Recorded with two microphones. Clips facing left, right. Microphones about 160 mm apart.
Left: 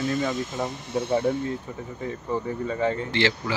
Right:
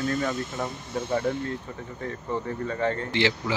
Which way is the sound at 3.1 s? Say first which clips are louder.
Even; 15° right (ahead or behind).